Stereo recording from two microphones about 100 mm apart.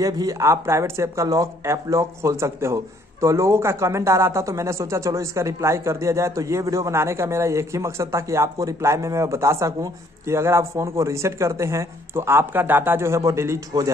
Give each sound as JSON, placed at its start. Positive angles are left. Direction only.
{"t": 0.0, "sound": "speech", "side_deg": -35}